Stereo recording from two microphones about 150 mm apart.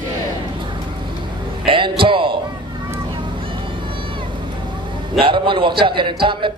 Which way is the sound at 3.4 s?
35° right (ahead or behind).